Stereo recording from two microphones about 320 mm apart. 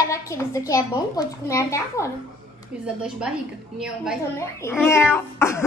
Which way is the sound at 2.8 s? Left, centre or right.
Centre.